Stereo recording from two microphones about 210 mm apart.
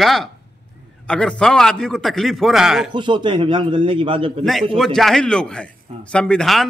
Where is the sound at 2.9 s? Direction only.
20° right (ahead or behind).